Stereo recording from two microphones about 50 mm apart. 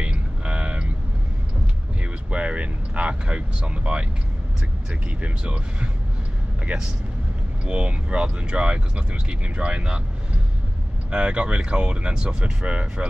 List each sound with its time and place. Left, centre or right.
0.0 s a sound: right
2.0 s speech: right
6.7 s speech: right
11.1 s speech: right